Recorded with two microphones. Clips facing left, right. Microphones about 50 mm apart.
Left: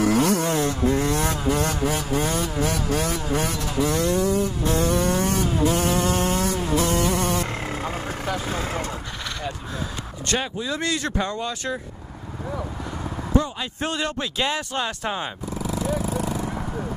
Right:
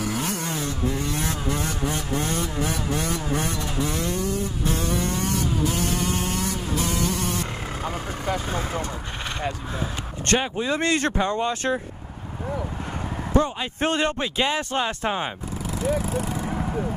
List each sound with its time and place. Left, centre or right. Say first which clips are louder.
0.0 s vehicle: left 8 dB; left
0.6 s vehicle: left 5 dB; left
1.3 s a sound: left 4 dB; centre
2.0 s vehicle: left 2 dB; left
2.6 s vehicle: left 3 dB; left
3.8 s vehicle: left 6 dB; left
5.2 s a sound: left 3 dB; left
10.2 s speech: right 3 dB; right
13.3 s speech: right 1 dB; right
14.2 s speech: right 1 dB; centre
16.0 s vehicle: left 1 dB; left